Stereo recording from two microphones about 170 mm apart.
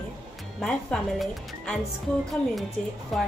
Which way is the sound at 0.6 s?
5° left (ahead or behind).